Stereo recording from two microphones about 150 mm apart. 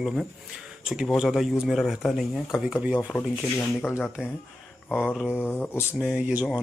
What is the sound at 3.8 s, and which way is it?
Speech, 15° left (ahead or behind).